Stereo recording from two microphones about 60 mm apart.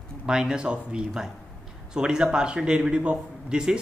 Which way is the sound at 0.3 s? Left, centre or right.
Centre.